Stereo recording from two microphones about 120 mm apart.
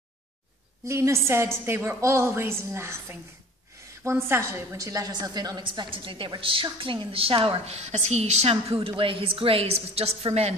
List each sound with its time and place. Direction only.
0.8 s a woman's voice: 25° right (ahead or behind); by 8.7 s 60° right (ahead or behind)
8.8 s a woman's voice: 45° right (ahead or behind)